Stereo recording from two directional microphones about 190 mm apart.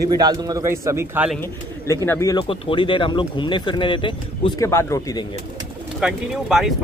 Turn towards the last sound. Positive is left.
turn(degrees=-5)  # may be behind; listen again after turning